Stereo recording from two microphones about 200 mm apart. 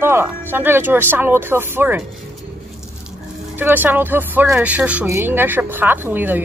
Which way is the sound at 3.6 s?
10° right (ahead or behind).